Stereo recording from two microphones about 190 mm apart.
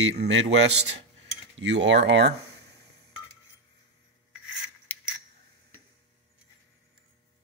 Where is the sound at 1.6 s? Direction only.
70° right (ahead or behind).